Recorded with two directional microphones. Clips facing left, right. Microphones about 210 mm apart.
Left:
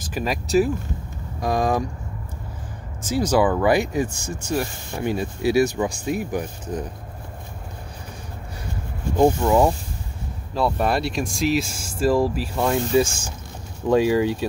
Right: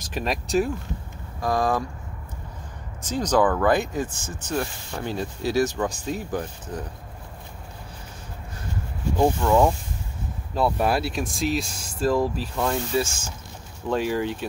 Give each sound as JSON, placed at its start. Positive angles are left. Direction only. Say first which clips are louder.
{"t": 0.0, "sound": "speech", "louder": "left 2 dB", "side_deg": 0}
{"t": 1.4, "sound": "speech", "louder": "left 2 dB", "side_deg": 15}
{"t": 3.0, "sound": "speech", "louder": "left 2 dB", "side_deg": 10}
{"t": 9.2, "sound": "speech", "louder": "left 2 dB", "side_deg": 15}
{"t": 10.5, "sound": "speech", "louder": "left 1 dB", "side_deg": 0}